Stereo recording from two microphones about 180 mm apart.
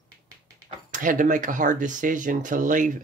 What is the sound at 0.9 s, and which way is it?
Speech, 45° right (ahead or behind).